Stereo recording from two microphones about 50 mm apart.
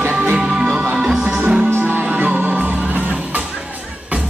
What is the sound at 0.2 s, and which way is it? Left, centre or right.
Music, centre.